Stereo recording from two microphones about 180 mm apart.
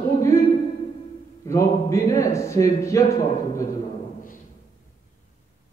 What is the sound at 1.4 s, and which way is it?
Speech, 15° left (ahead or behind).